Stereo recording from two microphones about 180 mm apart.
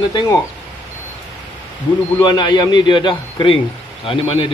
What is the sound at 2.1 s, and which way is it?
A man's voice, 25° left (ahead or behind).